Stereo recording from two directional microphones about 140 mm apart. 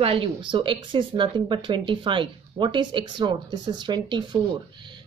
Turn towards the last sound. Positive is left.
turn(degrees=-35)  # may be behind; listen again after turning